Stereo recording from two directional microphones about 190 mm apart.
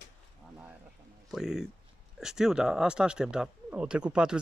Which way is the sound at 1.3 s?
Centre (ahead or behind).